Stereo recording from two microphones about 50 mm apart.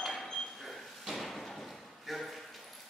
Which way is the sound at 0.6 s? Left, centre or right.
Centre.